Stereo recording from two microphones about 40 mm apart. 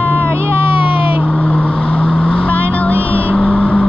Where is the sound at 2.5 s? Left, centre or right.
Left.